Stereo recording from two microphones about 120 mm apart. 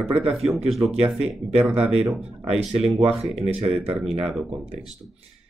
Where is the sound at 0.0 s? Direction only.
5° right (ahead or behind).